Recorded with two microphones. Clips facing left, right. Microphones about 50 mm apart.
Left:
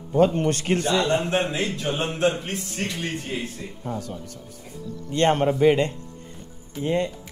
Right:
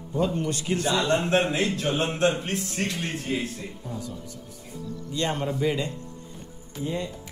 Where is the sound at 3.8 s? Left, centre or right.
Left.